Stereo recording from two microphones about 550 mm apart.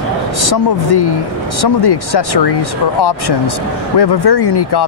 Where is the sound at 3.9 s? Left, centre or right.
Left.